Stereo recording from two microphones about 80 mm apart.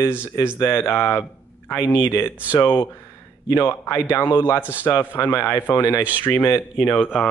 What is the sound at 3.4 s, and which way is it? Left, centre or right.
Speech, left.